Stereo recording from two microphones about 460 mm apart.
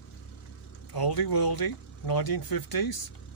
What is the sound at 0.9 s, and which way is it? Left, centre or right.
Speech, left.